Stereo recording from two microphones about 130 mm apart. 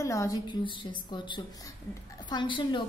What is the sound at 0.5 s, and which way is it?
A woman's voice, 35° left (ahead or behind).